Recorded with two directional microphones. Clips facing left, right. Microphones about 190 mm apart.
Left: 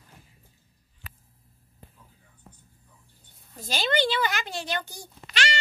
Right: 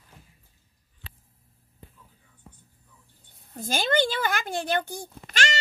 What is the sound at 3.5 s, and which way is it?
Speech, 50° right (ahead or behind).